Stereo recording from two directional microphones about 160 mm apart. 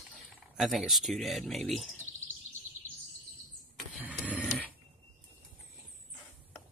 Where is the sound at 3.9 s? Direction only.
10° right (ahead or behind).